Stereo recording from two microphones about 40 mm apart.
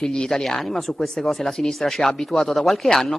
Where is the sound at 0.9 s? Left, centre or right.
Centre.